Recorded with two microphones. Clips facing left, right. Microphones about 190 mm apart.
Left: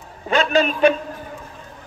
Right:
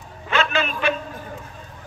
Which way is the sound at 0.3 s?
35° left (ahead or behind).